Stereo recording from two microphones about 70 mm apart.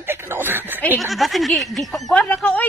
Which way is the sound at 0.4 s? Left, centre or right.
Right.